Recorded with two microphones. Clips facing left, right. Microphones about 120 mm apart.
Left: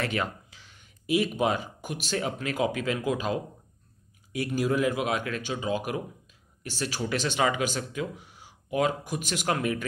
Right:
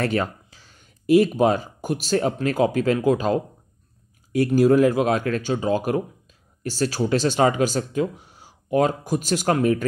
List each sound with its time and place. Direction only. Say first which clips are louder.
0.0 s speech: right 6 dB; 35° right (ahead or behind)